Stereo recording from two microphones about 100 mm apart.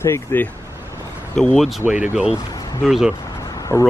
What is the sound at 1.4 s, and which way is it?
Speech, 5° left (ahead or behind).